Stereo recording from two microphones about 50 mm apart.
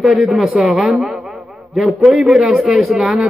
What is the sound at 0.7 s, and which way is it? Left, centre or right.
Speech, right.